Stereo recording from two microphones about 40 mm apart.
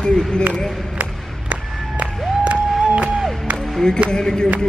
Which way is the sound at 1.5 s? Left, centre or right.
Right.